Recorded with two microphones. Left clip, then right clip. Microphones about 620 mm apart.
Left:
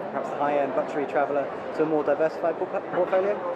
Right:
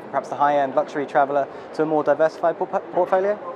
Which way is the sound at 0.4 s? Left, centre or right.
Right.